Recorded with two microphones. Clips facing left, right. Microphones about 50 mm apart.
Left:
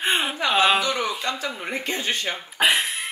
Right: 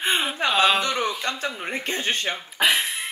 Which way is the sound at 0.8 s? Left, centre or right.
Right.